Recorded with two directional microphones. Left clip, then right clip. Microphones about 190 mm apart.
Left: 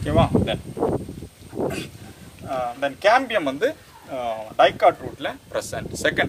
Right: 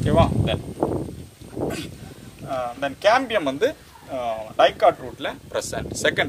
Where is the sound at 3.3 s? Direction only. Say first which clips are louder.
Even; 25° right (ahead or behind).